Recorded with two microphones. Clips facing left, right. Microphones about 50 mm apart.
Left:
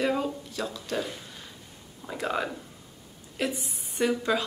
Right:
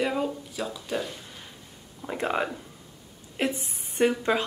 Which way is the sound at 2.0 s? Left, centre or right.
Right.